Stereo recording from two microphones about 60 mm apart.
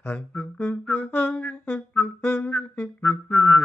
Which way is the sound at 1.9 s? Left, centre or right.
Left.